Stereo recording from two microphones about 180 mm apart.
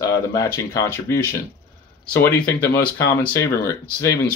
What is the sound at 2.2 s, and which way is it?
Speech, 10° left (ahead or behind).